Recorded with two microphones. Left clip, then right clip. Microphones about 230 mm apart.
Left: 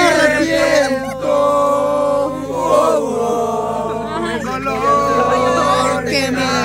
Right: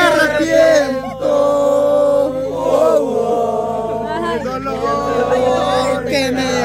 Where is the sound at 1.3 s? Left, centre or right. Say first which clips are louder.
Even; centre.